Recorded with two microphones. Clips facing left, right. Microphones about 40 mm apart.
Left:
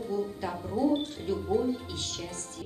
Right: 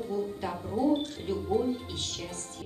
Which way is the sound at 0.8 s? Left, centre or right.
Right.